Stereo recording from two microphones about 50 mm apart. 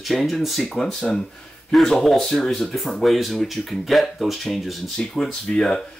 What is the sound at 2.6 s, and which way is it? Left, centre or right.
Speech, centre.